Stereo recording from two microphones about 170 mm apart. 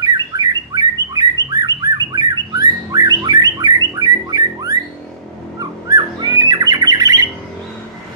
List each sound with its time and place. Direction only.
0.0 s bird: 25° right (ahead or behind)